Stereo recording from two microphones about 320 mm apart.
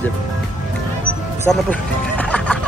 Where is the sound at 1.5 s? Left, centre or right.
Centre.